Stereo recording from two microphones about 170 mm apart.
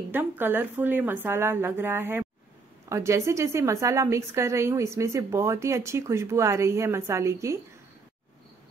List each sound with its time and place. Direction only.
0.1 s a woman's voice: 10° right (ahead or behind)